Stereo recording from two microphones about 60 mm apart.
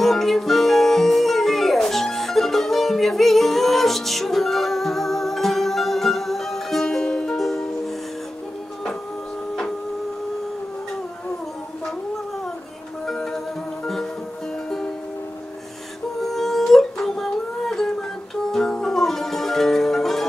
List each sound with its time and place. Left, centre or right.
0.0 s music: centre
13.0 s music: centre
16.2 s a sound: centre